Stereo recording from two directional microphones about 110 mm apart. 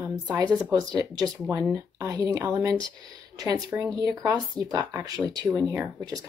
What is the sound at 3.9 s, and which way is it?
Speech, 35° right (ahead or behind).